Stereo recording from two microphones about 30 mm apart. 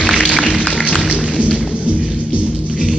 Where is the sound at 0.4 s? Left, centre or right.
Left.